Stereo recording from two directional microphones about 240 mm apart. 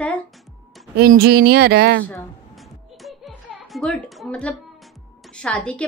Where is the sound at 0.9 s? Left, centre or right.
Right.